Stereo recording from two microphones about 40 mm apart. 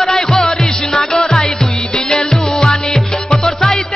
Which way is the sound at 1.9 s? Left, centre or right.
Centre.